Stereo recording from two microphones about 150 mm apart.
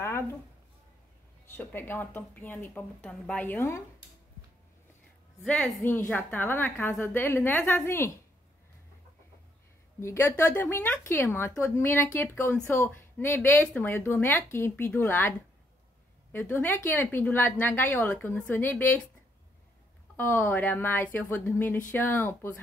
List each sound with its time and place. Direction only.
0.0 s a sound: 15° left (ahead or behind)
1.5 s a woman's voice: 15° left (ahead or behind)
5.4 s a woman's voice: centre (ahead or behind)
9.9 s a woman's voice: 15° left (ahead or behind)
20.2 s a woman's voice: 15° left (ahead or behind)